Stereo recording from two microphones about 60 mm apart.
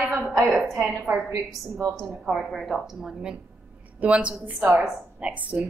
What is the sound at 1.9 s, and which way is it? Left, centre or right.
A woman's voice, centre.